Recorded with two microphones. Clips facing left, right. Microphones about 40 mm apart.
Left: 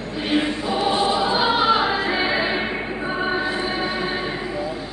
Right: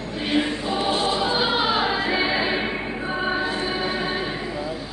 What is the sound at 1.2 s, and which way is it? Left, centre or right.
Choir, centre.